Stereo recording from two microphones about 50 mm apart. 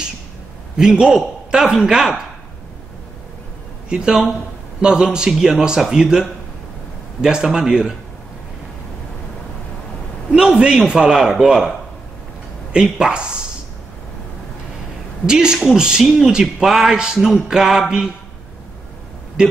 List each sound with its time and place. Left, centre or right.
0.7 s a man's voice: centre
3.9 s a man's voice: centre
10.3 s a man's voice: centre
12.7 s a man's voice: centre
15.2 s a man's voice: centre